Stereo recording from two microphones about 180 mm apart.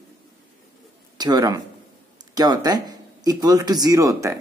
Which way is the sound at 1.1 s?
20° right (ahead or behind).